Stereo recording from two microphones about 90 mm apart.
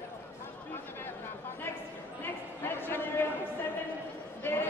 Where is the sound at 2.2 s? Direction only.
25° left (ahead or behind).